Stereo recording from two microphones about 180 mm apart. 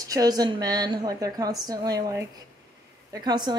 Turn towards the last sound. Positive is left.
turn(degrees=-25)  # may be behind; listen again after turning